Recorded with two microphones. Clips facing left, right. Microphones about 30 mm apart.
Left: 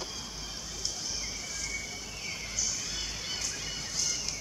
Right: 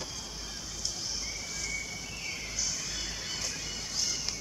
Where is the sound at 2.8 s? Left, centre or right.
Centre.